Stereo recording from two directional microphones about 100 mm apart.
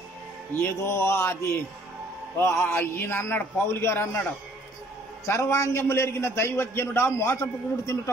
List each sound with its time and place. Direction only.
0.6 s a man's voice: 25° left (ahead or behind)
5.2 s a man's voice: 30° left (ahead or behind)